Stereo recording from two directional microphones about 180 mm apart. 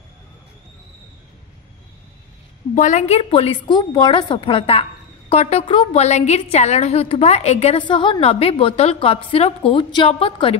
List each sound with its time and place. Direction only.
2.7 s a woman's voice: 45° left (ahead or behind)